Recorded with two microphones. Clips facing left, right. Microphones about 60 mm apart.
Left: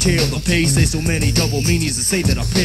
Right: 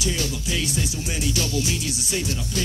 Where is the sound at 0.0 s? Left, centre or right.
Left.